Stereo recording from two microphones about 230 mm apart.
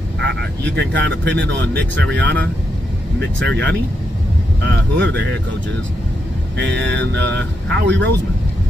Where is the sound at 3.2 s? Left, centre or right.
Right.